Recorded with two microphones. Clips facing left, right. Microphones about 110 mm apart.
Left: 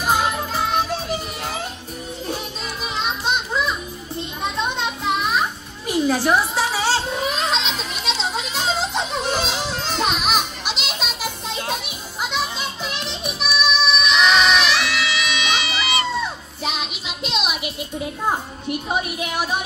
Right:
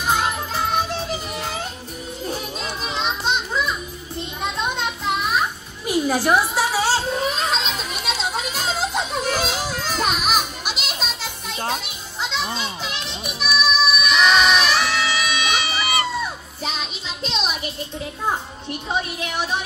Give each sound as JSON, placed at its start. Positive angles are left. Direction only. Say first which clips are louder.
{"t": 3.0, "sound": "music", "louder": "even", "side_deg": 0}
{"t": 4.4, "sound": "children playing", "louder": "left 1 dB", "side_deg": 0}
{"t": 5.9, "sound": "a sound", "louder": "even", "side_deg": -10}
{"t": 8.0, "sound": "children playing", "louder": "left 1 dB", "side_deg": -5}
{"t": 8.7, "sound": "music", "louder": "even", "side_deg": -5}
{"t": 11.1, "sound": "children playing", "louder": "left 4 dB", "side_deg": 15}
{"t": 11.5, "sound": "music", "louder": "right 3 dB", "side_deg": -20}
{"t": 12.2, "sound": "children playing", "louder": "left 1 dB", "side_deg": 15}
{"t": 13.2, "sound": "music", "louder": "right 1 dB", "side_deg": 0}
{"t": 14.7, "sound": "music", "louder": "right 1 dB", "side_deg": -40}